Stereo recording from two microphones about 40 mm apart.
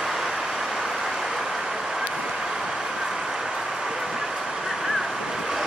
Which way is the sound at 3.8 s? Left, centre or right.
Centre.